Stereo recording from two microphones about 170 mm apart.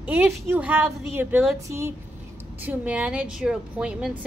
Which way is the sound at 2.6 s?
10° right (ahead or behind).